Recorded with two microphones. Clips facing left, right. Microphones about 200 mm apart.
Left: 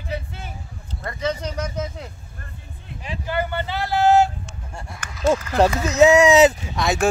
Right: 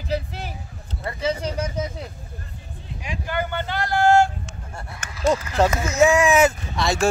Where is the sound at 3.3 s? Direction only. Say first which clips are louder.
Left 1 dB; 5° left (ahead or behind).